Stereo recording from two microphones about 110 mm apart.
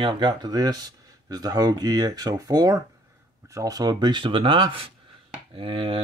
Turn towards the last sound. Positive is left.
turn(degrees=-55)  # may be behind; listen again after turning